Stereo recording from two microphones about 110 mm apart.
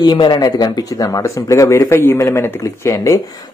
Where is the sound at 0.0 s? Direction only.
40° left (ahead or behind).